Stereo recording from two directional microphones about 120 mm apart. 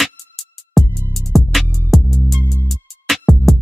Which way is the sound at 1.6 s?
20° left (ahead or behind).